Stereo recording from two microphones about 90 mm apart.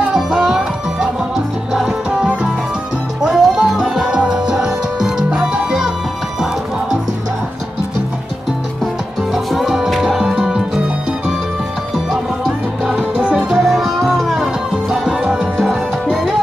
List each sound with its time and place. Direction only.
0.1 s music: 5° right (ahead or behind)
9.3 s music: 5° right (ahead or behind)
11.9 s music: 5° right (ahead or behind)